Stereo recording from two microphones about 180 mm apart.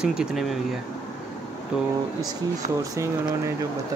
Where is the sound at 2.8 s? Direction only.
15° right (ahead or behind).